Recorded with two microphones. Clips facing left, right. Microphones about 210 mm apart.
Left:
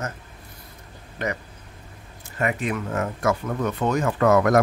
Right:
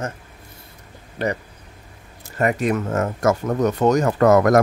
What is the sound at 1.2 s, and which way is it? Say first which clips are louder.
Speech: right 5 dB; 35° right (ahead or behind).